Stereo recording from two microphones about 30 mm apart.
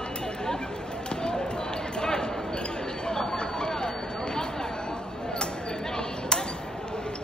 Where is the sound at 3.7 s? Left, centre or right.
Centre.